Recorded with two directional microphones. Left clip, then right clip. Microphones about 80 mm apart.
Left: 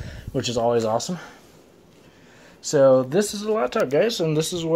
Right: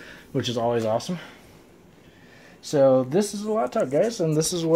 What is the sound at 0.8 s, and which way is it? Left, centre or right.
Speech, left.